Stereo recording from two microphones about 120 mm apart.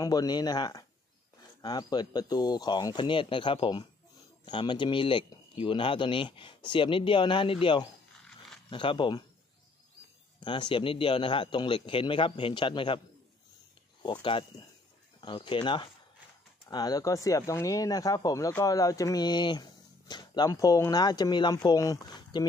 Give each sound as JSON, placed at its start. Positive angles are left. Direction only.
{"t": 0.0, "sound": "speech", "side_deg": 30}
{"t": 10.4, "sound": "speech", "side_deg": 40}
{"t": 15.1, "sound": "speech", "side_deg": 40}
{"t": 16.6, "sound": "speech", "side_deg": 30}